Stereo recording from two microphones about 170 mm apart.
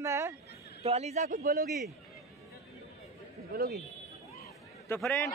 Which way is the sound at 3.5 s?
65° right (ahead or behind).